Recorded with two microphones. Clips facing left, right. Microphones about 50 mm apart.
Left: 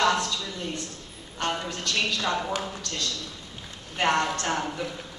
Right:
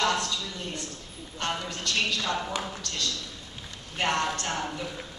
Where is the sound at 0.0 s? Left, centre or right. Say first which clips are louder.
Left 3 dB; left.